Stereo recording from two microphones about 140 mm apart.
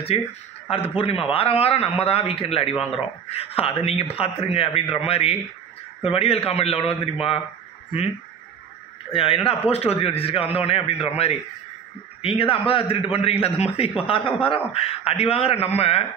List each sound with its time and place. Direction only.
0.1 s a man's voice: 45° left (ahead or behind)
9.1 s a man's voice: 40° left (ahead or behind)